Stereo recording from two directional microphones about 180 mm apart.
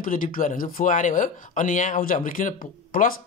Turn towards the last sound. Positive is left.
turn(degrees=50)  # may be behind; listen again after turning